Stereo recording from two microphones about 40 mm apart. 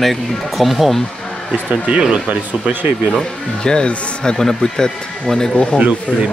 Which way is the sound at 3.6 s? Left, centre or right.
Left.